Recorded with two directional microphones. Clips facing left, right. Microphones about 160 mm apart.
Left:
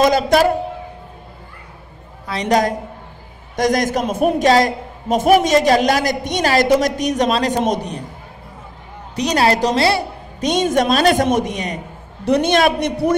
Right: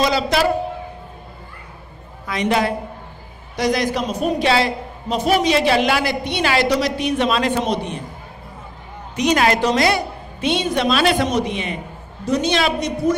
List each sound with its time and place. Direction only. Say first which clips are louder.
0.0 s a woman's voice: left 4 dB; 45° left (ahead or behind)
2.2 s a woman's voice: left 2 dB; 35° left (ahead or behind)
9.1 s a woman's voice: left 1 dB; 35° left (ahead or behind)
10.5 s a woman's voice: left 4 dB; 45° left (ahead or behind)
12.3 s a man's voice: left 4 dB; 55° left (ahead or behind)